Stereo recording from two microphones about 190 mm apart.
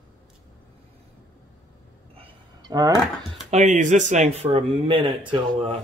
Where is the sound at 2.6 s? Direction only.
20° right (ahead or behind).